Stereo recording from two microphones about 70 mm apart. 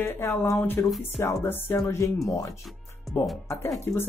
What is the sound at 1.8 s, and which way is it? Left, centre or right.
Speech, left.